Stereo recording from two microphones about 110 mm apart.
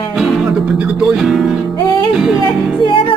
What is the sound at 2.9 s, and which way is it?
Music, 50° left (ahead or behind).